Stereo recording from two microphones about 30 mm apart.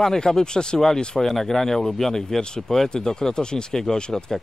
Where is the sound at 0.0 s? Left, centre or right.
Centre.